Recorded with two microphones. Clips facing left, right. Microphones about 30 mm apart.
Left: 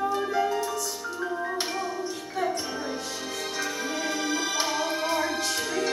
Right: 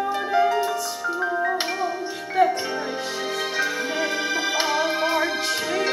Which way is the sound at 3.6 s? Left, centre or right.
Right.